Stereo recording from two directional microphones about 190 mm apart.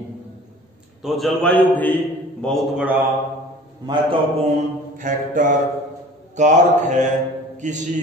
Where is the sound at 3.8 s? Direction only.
25° right (ahead or behind).